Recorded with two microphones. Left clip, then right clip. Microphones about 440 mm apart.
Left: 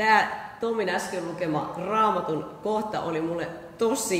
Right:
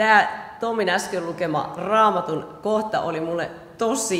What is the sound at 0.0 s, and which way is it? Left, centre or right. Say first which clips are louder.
A man's voice: right 4 dB; right.